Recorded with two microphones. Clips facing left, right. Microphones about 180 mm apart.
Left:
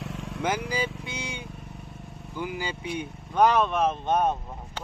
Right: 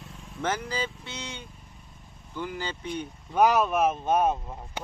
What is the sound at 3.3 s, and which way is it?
Speech, 5° right (ahead or behind).